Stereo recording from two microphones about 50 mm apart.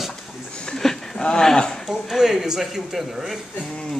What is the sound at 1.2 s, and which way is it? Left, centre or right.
Speech, centre.